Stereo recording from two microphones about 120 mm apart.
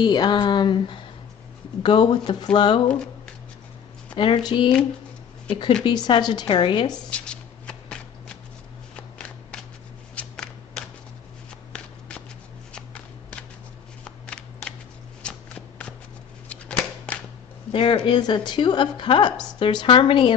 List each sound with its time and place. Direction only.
0.0 s a woman's voice: 35° left (ahead or behind)
4.1 s a woman's voice: 40° left (ahead or behind)
7.1 s shuffling cards: 10° left (ahead or behind)
8.9 s walk: 5° left (ahead or behind)
10.1 s shuffling cards: 5° left (ahead or behind)
12.7 s walk: 10° left (ahead or behind)
14.0 s shuffling cards: 10° left (ahead or behind)
15.2 s walk: 10° left (ahead or behind)
16.4 s a sound: 10° left (ahead or behind)
17.7 s a woman's voice: 45° left (ahead or behind)